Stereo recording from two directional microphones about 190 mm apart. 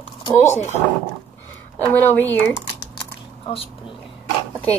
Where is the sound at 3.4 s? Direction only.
30° left (ahead or behind).